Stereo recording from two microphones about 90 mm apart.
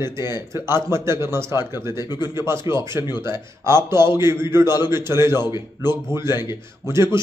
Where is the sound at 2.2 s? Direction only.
30° right (ahead or behind).